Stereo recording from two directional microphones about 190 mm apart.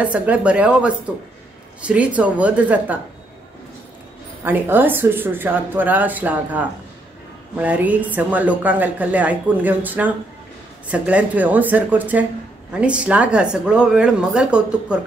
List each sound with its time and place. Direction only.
0.0 s speech: 5° right (ahead or behind)
4.5 s a woman's voice: 10° right (ahead or behind)